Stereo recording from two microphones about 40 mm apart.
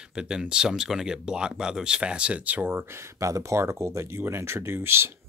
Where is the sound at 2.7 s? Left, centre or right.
Right.